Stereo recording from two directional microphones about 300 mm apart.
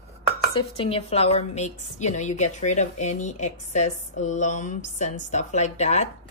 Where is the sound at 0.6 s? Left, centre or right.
Centre.